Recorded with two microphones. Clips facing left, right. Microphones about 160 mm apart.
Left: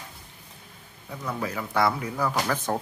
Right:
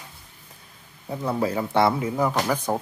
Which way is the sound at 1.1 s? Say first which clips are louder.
Right 7 dB; 30° right (ahead or behind).